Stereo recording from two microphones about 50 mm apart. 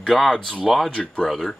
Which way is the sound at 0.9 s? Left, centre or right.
Left.